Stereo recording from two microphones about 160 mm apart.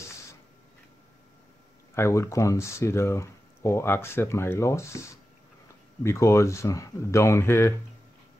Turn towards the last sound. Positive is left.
turn(degrees=15)  # may be behind; listen again after turning